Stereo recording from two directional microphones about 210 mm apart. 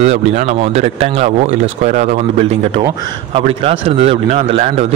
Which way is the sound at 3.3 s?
25° right (ahead or behind).